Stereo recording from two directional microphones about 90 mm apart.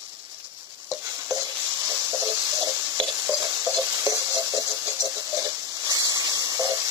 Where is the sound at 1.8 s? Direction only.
30° right (ahead or behind).